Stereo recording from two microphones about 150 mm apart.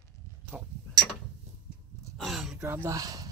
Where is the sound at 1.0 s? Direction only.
15° left (ahead or behind).